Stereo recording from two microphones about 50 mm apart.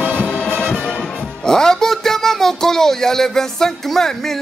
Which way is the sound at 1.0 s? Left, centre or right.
Centre.